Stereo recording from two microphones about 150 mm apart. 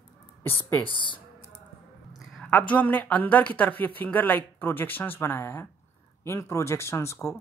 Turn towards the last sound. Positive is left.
turn(degrees=20)  # may be behind; listen again after turning